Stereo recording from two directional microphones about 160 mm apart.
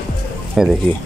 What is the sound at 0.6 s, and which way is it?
Speech, centre (ahead or behind).